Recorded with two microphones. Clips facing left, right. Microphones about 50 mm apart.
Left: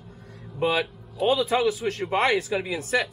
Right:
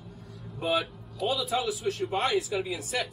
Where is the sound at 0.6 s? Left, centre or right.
Left.